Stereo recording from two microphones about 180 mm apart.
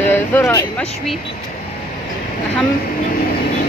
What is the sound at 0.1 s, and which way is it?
Vehicle, 15° left (ahead or behind).